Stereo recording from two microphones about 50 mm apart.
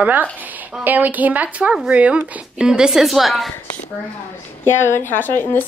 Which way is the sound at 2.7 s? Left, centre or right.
Centre.